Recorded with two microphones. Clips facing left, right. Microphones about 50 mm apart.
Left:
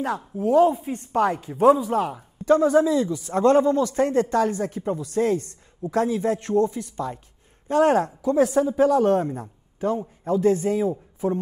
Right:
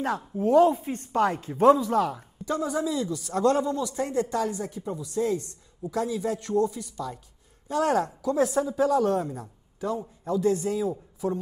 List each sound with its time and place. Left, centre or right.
0.0 s a man's voice: left
1.6 s speech: centre
2.4 s speech: left
3.1 s a man's voice: left